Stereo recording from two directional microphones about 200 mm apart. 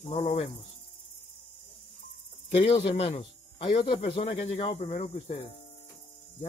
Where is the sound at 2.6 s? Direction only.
30° left (ahead or behind).